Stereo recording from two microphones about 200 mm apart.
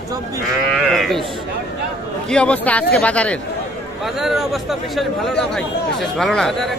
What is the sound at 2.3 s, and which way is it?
Speech, 5° left (ahead or behind).